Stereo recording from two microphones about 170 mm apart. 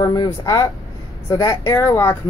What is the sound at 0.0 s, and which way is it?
Speech, 20° left (ahead or behind).